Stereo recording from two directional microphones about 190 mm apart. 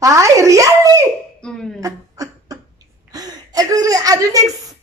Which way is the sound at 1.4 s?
5° left (ahead or behind).